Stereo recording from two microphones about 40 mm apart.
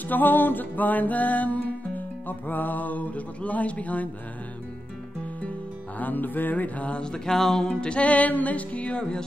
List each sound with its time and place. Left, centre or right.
0.1 s music: left
5.9 s music: left
7.0 s a sound: centre
7.8 s music: left
8.1 s music: left